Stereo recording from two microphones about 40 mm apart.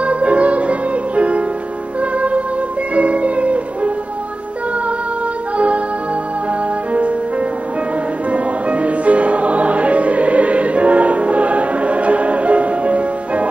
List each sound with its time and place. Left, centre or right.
0.0 s music: right
6.9 s music: right
8.3 s music: right